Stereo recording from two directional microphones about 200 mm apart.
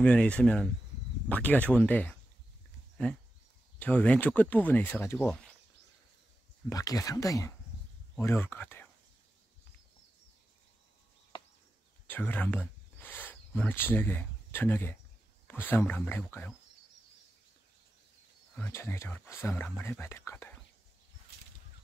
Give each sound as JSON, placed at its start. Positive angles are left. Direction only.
{"t": 0.0, "sound": "speech", "side_deg": 5}
{"t": 3.8, "sound": "speech", "side_deg": 5}
{"t": 6.7, "sound": "speech", "side_deg": 20}
{"t": 12.1, "sound": "speech", "side_deg": 10}
{"t": 18.5, "sound": "speech", "side_deg": 10}